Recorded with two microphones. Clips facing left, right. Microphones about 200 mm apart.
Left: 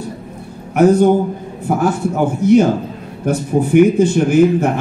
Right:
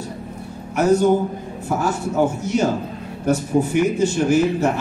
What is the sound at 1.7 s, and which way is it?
Speech, 55° left (ahead or behind).